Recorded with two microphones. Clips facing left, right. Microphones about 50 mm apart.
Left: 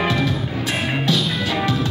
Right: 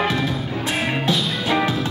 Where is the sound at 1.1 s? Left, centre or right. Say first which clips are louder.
Even; right.